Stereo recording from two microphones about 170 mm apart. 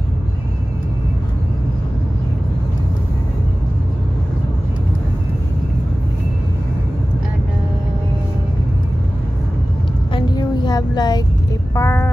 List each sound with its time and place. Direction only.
10.1 s vehicle: 25° left (ahead or behind)
11.7 s speech: 15° left (ahead or behind)